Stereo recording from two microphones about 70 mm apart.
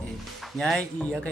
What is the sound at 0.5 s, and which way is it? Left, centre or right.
Speech, centre.